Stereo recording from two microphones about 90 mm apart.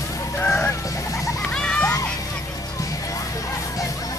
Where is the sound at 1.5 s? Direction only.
10° left (ahead or behind).